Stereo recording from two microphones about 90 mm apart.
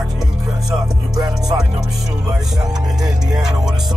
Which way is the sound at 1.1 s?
45° right (ahead or behind).